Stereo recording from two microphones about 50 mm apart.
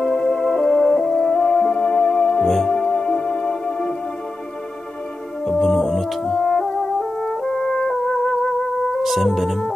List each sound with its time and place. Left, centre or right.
0.0 s music: left
2.4 s music: centre
2.7 s music: centre
5.4 s music: centre
9.0 s speech: centre